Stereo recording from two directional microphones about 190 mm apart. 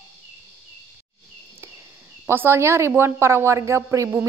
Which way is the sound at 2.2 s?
10° right (ahead or behind).